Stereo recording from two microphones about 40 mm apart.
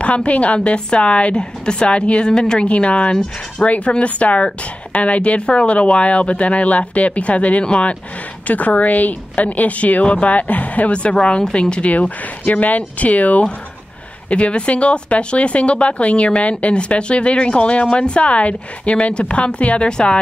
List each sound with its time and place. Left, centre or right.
0.0 s speech: left
8.5 s speech: left
10.9 s speech: left
14.3 s speech: left
19.9 s speech: centre